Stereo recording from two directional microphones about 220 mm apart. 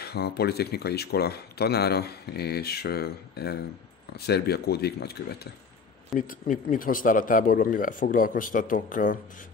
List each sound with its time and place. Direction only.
0.0 s speech: 45° left (ahead or behind)